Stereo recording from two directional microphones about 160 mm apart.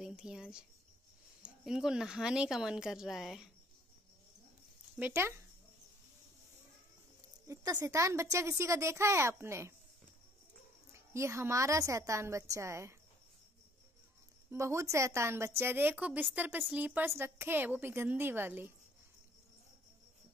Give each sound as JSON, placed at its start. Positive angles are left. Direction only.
{"t": 0.0, "sound": "speech", "side_deg": -5}
{"t": 4.9, "sound": "speech", "side_deg": -15}
{"t": 7.7, "sound": "a woman's voice", "side_deg": -20}
{"t": 10.9, "sound": "a woman's voice", "side_deg": -15}
{"t": 14.5, "sound": "a woman's voice", "side_deg": -20}